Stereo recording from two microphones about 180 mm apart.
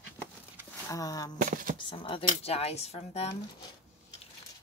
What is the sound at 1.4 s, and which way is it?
Speech, 50° right (ahead or behind).